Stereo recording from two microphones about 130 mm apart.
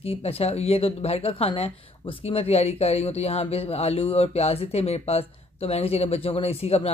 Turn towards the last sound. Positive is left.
turn(degrees=50)  # may be behind; listen again after turning